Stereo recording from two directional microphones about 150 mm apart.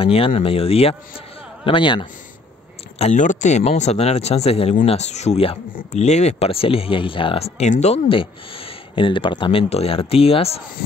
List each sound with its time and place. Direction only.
0.0 s a man's voice: 35° left (ahead or behind)
3.0 s speech: 55° left (ahead or behind)